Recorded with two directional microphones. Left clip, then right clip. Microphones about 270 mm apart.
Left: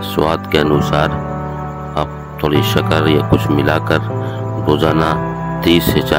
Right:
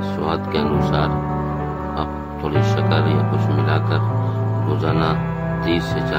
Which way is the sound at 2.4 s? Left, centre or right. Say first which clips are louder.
Left 6 dB; left.